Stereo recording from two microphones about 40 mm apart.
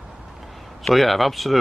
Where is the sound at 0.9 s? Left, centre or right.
Centre.